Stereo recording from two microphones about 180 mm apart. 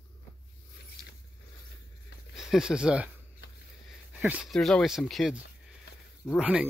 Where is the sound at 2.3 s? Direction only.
Centre (ahead or behind).